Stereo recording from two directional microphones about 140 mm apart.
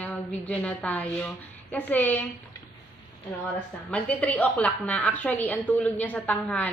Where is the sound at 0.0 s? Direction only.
10° left (ahead or behind).